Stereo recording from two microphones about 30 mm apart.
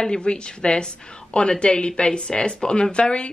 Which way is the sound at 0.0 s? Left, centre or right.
Left.